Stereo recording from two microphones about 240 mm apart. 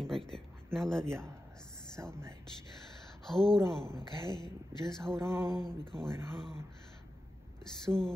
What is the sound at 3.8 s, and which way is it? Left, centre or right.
Speech, centre.